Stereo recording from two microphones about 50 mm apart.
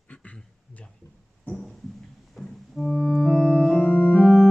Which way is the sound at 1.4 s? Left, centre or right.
Centre.